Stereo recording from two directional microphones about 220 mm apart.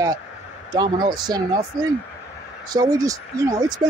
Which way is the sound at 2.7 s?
15° right (ahead or behind).